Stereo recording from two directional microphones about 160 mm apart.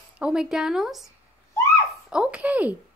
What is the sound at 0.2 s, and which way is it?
Speech, 5° right (ahead or behind).